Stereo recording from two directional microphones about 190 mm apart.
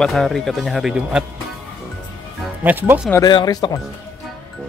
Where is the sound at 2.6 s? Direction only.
10° right (ahead or behind).